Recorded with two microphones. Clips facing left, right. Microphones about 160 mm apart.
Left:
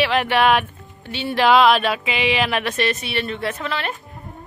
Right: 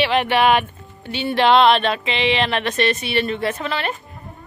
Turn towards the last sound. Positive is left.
turn(degrees=0)  # may be behind; listen again after turning